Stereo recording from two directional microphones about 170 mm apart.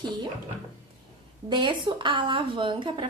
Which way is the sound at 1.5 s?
25° right (ahead or behind).